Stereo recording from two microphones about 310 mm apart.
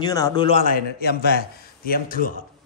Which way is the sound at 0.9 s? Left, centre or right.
Left.